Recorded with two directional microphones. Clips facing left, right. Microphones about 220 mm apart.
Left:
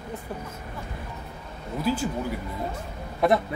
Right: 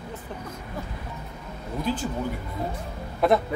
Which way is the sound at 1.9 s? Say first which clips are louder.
Left 2 dB; 5° left (ahead or behind).